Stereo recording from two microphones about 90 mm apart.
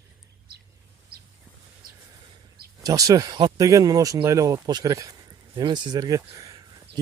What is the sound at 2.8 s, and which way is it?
Speech, 45° right (ahead or behind).